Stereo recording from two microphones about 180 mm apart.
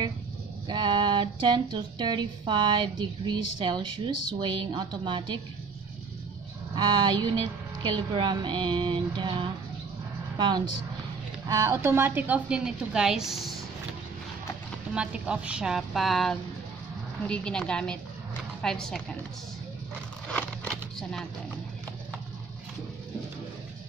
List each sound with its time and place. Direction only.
0.7 s speech: 25° right (ahead or behind)
6.7 s a woman's voice: 25° right (ahead or behind); by 13.5 s centre (ahead or behind)
15.0 s a woman's voice: 5° right (ahead or behind)
20.2 s a sound: 5° left (ahead or behind)